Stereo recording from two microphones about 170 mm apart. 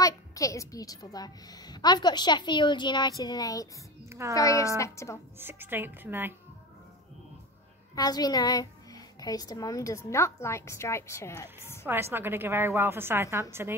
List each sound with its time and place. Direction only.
0.0 s a woman's voice: 20° left (ahead or behind)
4.1 s a woman's voice: 15° right (ahead or behind)
4.4 s a woman's voice: 20° left (ahead or behind)
5.4 s a woman's voice: 10° right (ahead or behind)
7.9 s a woman's voice: 20° left (ahead or behind)
11.8 s a woman's voice: 15° right (ahead or behind)